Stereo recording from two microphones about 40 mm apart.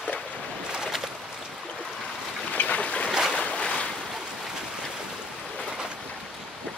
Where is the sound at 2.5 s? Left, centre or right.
Left.